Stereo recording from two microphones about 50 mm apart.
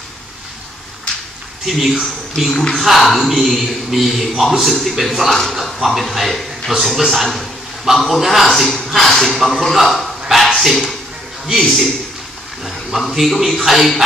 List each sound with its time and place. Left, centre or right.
1.1 s a sound: left
1.7 s a man's voice: centre
2.3 s speech: centre
2.7 s a man's voice: centre
12.6 s a man's voice: centre